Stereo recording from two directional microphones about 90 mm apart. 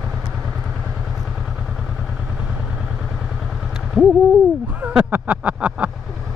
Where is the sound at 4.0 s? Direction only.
Centre (ahead or behind).